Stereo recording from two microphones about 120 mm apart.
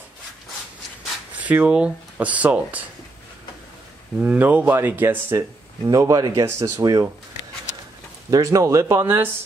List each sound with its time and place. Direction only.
1.3 s speech: 15° right (ahead or behind)
4.2 s speech: 10° right (ahead or behind); by 7.1 s 25° right (ahead or behind)
8.3 s speech: 25° right (ahead or behind)